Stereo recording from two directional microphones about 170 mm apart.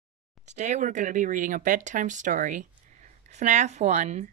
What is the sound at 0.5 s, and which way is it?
Speech, 45° right (ahead or behind).